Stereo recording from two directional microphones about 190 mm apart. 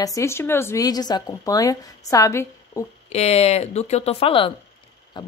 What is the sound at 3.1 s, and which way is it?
Speech, 35° left (ahead or behind).